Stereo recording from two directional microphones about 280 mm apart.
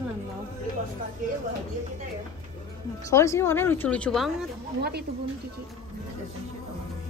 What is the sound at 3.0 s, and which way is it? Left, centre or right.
Speech, centre.